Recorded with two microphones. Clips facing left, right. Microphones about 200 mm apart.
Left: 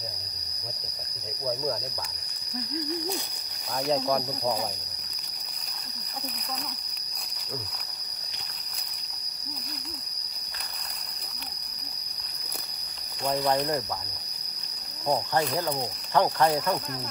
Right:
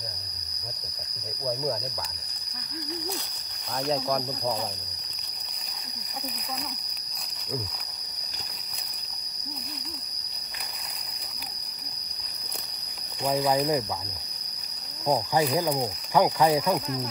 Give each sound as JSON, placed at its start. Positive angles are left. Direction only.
{"t": 3.8, "sound": "speech", "side_deg": 0}
{"t": 13.3, "sound": "speech", "side_deg": 0}
{"t": 15.0, "sound": "speech", "side_deg": -5}